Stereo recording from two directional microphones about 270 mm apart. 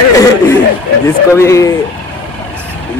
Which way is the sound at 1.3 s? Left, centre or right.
Centre.